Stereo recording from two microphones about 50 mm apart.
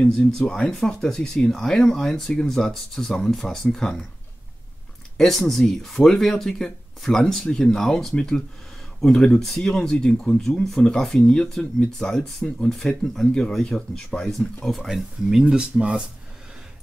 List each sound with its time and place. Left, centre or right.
0.4 s speech: centre
5.1 s speech: centre
9.9 s speech: left
12.2 s speech: centre
12.6 s speech: centre
14.2 s speech: centre
15.5 s speech: centre